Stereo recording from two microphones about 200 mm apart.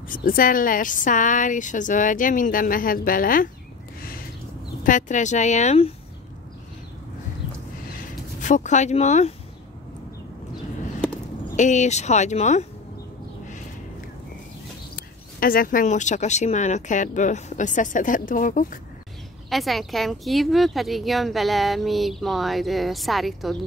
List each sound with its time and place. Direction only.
0.1 s a woman's voice: 45° left (ahead or behind)
4.8 s speech: 40° left (ahead or behind)
8.4 s speech: 40° left (ahead or behind)
11.5 s speech: 35° left (ahead or behind)
15.0 s speech: 45° left (ahead or behind)
19.5 s speech: centre (ahead or behind)